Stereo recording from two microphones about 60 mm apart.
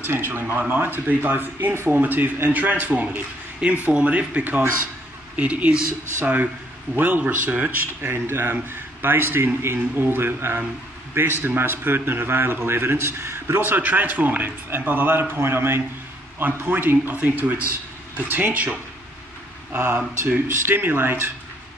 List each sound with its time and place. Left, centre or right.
0.0 s a man's voice: right
2.9 s speech: centre
6.2 s a man's voice: right
13.7 s a man's voice: right
16.3 s a man's voice: right